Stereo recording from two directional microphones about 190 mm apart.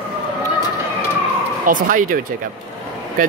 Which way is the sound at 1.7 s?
45° right (ahead or behind).